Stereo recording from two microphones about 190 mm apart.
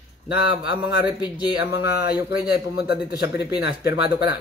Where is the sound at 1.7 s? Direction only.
55° left (ahead or behind).